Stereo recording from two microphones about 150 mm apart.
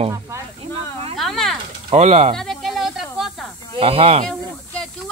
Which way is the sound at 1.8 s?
45° right (ahead or behind).